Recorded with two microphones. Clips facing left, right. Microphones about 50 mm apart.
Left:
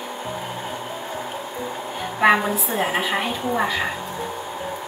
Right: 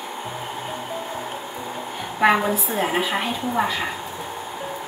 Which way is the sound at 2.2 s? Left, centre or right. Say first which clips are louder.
Left 1 dB; centre.